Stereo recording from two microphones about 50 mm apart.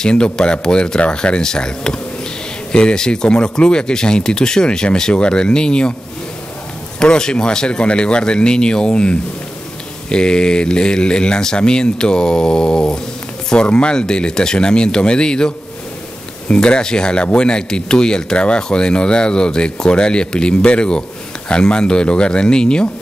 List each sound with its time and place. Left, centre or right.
0.0 s speech: centre
7.0 s speech: centre